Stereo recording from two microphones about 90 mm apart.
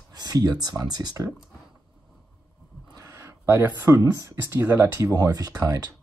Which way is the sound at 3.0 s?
30° right (ahead or behind).